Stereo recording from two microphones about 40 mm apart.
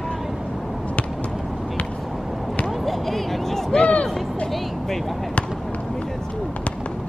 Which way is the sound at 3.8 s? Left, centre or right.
Left.